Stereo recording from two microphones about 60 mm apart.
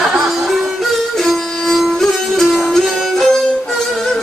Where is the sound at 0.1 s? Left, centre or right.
Centre.